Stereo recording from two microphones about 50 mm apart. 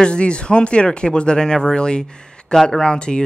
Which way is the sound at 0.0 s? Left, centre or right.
Left.